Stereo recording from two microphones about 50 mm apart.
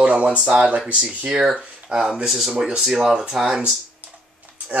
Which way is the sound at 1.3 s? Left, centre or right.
Centre.